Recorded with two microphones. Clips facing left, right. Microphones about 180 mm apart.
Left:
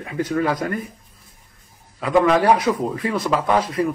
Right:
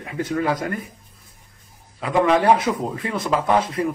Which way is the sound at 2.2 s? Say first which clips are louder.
Right 2 dB; 25° right (ahead or behind).